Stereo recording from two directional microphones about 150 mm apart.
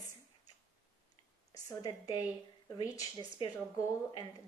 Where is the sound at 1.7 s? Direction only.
25° left (ahead or behind).